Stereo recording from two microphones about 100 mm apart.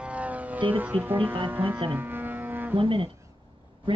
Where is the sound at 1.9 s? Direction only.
20° right (ahead or behind).